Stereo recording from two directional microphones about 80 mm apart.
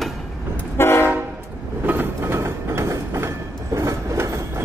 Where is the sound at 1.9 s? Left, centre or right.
Right.